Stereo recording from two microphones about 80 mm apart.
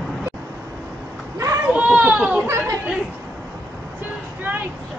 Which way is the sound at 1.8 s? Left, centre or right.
Centre.